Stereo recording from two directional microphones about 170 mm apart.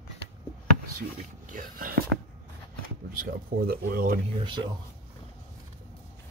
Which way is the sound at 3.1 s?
55° right (ahead or behind).